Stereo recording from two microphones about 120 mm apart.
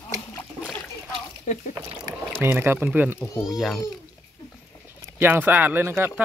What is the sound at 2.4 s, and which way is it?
Speech, 20° right (ahead or behind).